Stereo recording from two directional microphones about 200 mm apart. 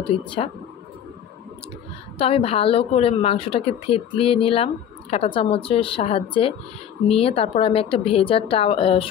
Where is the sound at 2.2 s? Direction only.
30° left (ahead or behind).